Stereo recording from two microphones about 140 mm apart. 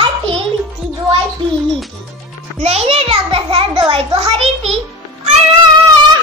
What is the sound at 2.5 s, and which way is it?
A child's voice, 50° right (ahead or behind).